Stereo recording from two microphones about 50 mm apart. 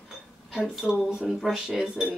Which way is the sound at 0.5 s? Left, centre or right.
Centre.